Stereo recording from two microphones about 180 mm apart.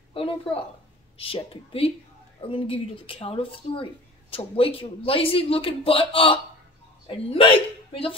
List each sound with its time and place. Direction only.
0.1 s a woman's voice: 30° left (ahead or behind)